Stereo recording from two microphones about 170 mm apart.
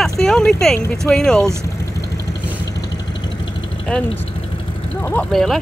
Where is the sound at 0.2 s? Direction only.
5° left (ahead or behind).